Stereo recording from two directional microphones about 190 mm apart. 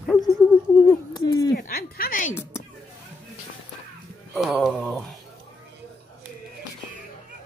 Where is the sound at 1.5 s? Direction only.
50° left (ahead or behind).